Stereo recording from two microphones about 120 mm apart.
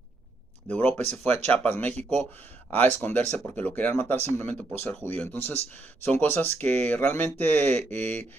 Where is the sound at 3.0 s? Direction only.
15° left (ahead or behind).